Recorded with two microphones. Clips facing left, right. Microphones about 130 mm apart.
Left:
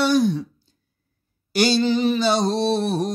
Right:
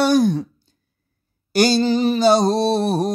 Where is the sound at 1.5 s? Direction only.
40° right (ahead or behind).